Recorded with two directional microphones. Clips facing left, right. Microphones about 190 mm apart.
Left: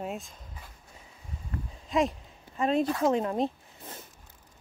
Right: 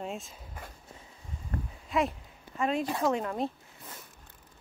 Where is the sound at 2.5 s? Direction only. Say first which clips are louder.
Left 4 dB; 35° left (ahead or behind).